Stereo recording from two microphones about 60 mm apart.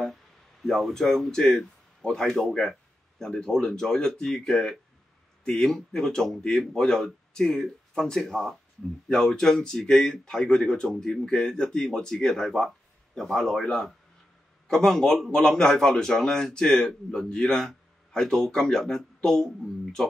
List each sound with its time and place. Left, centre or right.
0.0 s speech: centre